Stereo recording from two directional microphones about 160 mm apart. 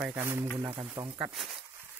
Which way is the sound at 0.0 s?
15° right (ahead or behind).